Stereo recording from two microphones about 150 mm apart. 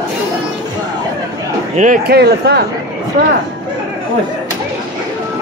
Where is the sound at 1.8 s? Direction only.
75° right (ahead or behind).